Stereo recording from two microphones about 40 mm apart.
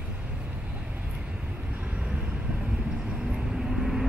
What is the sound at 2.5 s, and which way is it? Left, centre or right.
Vehicle, right.